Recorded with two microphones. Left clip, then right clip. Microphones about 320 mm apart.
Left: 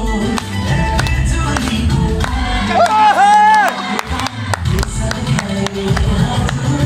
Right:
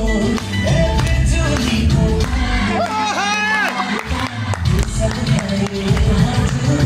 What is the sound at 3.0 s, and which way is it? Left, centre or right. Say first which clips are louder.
Music: left 10 dB; left.